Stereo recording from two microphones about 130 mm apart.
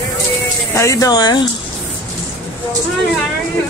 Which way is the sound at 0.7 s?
25° left (ahead or behind).